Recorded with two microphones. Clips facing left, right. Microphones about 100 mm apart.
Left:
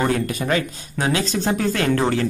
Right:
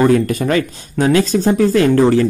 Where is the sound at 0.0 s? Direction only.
45° right (ahead or behind).